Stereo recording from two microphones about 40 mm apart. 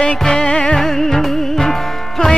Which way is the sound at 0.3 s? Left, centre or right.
Left.